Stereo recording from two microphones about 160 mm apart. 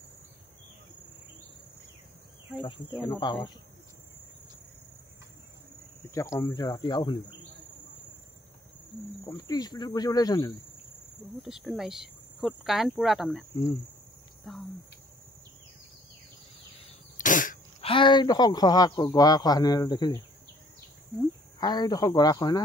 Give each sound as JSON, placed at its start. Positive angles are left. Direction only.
{"t": 3.0, "sound": "speech", "side_deg": 30}
{"t": 6.1, "sound": "speech", "side_deg": 20}
{"t": 9.2, "sound": "speech", "side_deg": 25}
{"t": 11.4, "sound": "speech", "side_deg": 0}
{"t": 17.2, "sound": "cough", "side_deg": 55}
{"t": 17.8, "sound": "speech", "side_deg": 30}
{"t": 21.5, "sound": "speech", "side_deg": 25}